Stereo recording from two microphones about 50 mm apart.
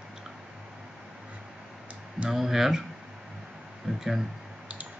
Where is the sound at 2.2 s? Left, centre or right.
Centre.